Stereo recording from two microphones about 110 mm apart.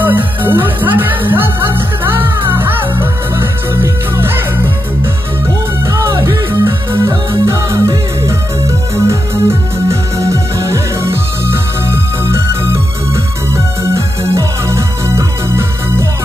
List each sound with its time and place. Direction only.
0.0 s music: 15° right (ahead or behind)
5.9 s music: 25° right (ahead or behind)